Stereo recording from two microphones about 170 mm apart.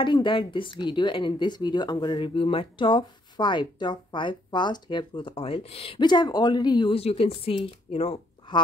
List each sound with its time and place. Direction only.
0.0 s speech: 30° left (ahead or behind)